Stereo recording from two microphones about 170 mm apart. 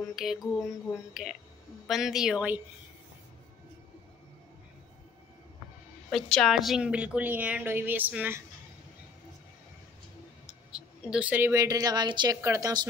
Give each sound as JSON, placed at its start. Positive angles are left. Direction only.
{"t": 0.1, "sound": "speech", "side_deg": 0}
{"t": 6.0, "sound": "a woman's voice", "side_deg": 0}
{"t": 10.7, "sound": "a woman's voice", "side_deg": -5}